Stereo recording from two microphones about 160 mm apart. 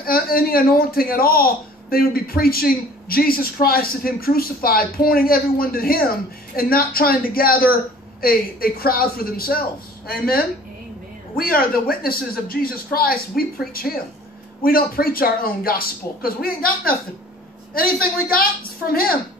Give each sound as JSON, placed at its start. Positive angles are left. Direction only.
{"t": 0.0, "sound": "speech", "side_deg": 65}